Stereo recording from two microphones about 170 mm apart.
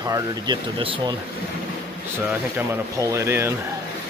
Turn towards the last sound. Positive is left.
turn(degrees=-15)  # may be behind; listen again after turning